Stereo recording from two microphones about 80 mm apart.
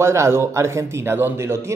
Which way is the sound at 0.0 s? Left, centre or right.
Right.